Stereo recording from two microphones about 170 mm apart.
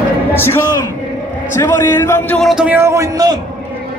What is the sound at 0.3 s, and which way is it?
A man's voice, 15° left (ahead or behind).